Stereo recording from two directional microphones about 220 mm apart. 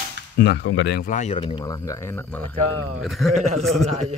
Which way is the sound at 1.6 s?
15° left (ahead or behind).